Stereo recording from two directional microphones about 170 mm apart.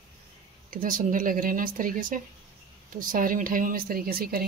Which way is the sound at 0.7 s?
55° right (ahead or behind).